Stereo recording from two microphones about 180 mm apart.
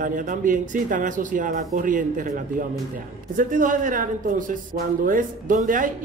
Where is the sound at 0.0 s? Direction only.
45° right (ahead or behind).